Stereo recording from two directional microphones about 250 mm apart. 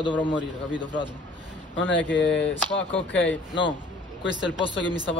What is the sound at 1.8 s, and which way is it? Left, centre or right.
Speech, left.